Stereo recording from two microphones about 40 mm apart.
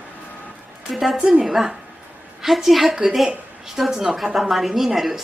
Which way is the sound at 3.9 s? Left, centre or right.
Centre.